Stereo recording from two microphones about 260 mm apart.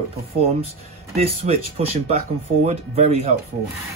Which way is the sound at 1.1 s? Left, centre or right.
Right.